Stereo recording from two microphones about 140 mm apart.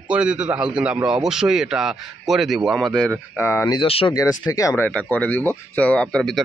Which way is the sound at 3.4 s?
20° left (ahead or behind).